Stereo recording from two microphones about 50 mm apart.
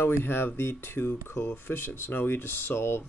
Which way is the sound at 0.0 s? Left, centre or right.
Left.